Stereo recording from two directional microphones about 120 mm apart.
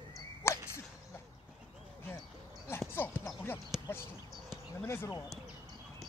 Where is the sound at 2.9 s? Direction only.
20° left (ahead or behind).